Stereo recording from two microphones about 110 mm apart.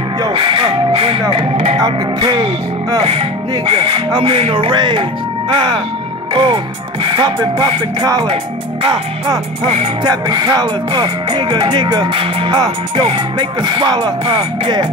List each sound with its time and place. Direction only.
0.3 s music: 50° right (ahead or behind)
1.8 s music: 40° right (ahead or behind)
10.0 s music: 40° right (ahead or behind)